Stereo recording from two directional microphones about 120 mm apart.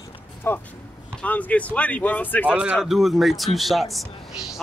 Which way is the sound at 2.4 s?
10° right (ahead or behind).